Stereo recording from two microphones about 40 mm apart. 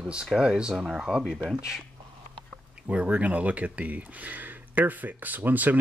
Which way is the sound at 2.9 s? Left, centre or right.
Right.